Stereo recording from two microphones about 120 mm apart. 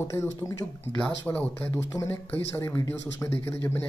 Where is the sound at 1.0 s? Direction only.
15° left (ahead or behind).